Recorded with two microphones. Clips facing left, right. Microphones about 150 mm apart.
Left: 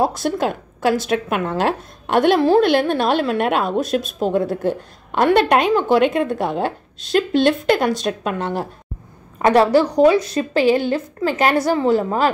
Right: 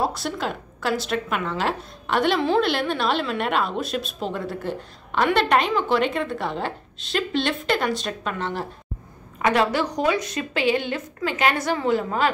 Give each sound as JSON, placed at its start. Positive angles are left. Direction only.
{"t": 0.0, "sound": "a woman's voice", "side_deg": 50}